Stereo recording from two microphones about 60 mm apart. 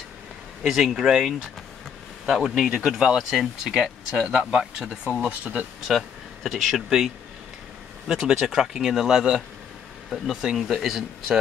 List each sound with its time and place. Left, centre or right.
0.7 s speech: centre; by 5.7 s right
5.9 s speech: centre
8.1 s speech: centre